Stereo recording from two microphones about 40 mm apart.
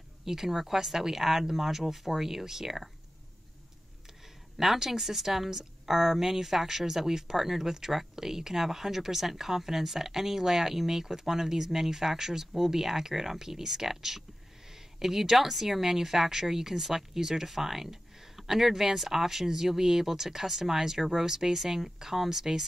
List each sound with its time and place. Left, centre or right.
0.2 s speech: centre
4.6 s speech: centre